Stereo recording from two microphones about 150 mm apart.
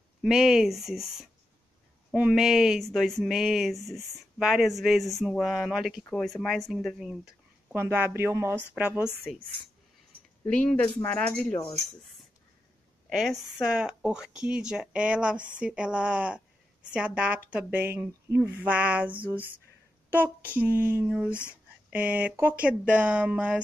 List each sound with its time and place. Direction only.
0.2 s speech: 5° right (ahead or behind)
7.7 s speech: 15° right (ahead or behind)
10.4 s speech: 10° left (ahead or behind)
13.1 s speech: centre (ahead or behind)
20.5 s speech: 10° right (ahead or behind)